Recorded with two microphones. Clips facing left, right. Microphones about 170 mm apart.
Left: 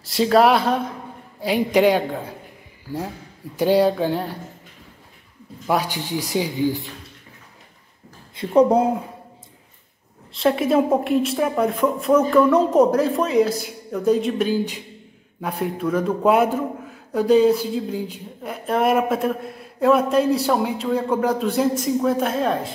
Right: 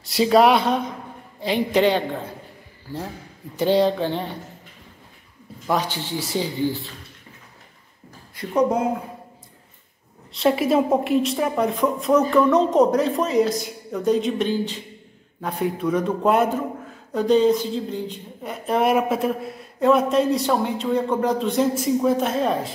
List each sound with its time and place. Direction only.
0.0 s speech: centre (ahead or behind)
3.5 s speech: 10° left (ahead or behind)
5.7 s speech: 10° left (ahead or behind)
8.4 s speech: 30° left (ahead or behind)
10.3 s speech: centre (ahead or behind)